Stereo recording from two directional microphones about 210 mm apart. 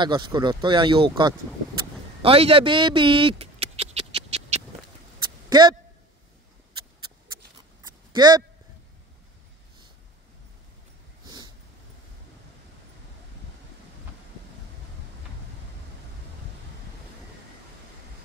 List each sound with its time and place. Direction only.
0.0 s speech: 20° right (ahead or behind)
2.2 s scratch: 25° right (ahead or behind)
5.5 s speech: 20° right (ahead or behind)
7.8 s a sound: 20° right (ahead or behind)
11.2 s sniff: 20° right (ahead or behind)